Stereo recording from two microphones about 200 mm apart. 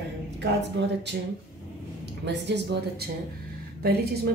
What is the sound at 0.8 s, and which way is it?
Speech, 65° right (ahead or behind).